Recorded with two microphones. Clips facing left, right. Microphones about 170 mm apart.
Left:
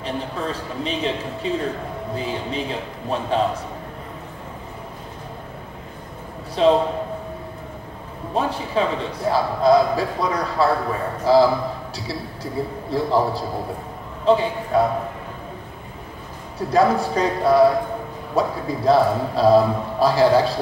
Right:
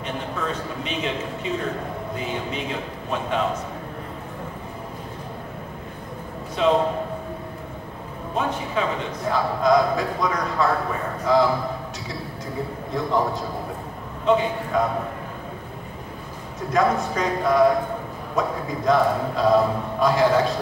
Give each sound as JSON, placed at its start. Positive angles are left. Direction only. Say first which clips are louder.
{"t": 0.0, "sound": "a man's voice", "louder": "left 2 dB", "side_deg": 35}
{"t": 6.6, "sound": "a man's voice", "louder": "left 4 dB", "side_deg": 35}
{"t": 8.4, "sound": "a man's voice", "louder": "left 3 dB", "side_deg": 35}
{"t": 12.9, "sound": "a man's voice", "louder": "left 3 dB", "side_deg": 35}
{"t": 16.5, "sound": "a man's voice", "louder": "left 3 dB", "side_deg": 35}